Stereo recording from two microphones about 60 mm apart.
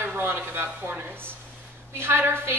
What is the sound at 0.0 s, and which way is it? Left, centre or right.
A woman's voice, right.